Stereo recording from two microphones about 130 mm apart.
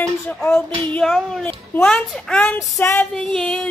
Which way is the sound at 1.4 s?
15° left (ahead or behind).